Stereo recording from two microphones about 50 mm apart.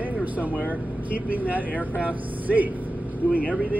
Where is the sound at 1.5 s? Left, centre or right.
Right.